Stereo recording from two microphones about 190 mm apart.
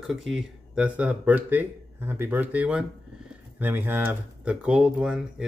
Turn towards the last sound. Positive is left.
turn(degrees=-5)  # may be behind; listen again after turning